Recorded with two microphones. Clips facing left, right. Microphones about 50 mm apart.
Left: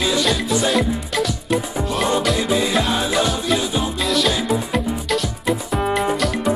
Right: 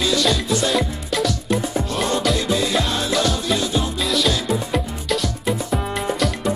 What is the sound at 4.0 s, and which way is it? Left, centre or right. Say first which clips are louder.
Music: left 3 dB; centre.